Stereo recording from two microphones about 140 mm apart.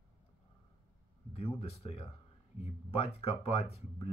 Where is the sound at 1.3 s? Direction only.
45° left (ahead or behind).